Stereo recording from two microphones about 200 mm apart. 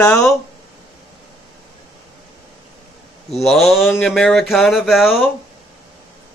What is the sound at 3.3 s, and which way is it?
Speech, centre (ahead or behind).